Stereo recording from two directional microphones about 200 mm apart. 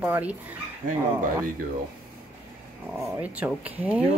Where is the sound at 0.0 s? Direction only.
5° right (ahead or behind).